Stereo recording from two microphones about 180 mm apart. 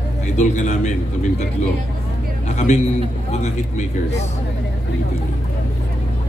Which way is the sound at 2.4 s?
40° left (ahead or behind).